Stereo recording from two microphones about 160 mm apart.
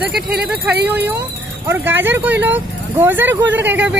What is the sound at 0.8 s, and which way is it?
Speech, 10° right (ahead or behind).